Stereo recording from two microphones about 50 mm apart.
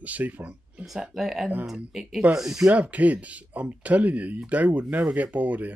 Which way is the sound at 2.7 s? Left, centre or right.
Right.